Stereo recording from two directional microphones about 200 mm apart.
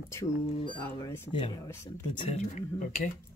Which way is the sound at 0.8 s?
10° left (ahead or behind).